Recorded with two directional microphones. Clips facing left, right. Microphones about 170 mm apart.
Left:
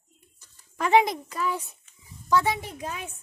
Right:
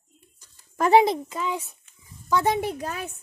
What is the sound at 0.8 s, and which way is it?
Speech, 35° right (ahead or behind).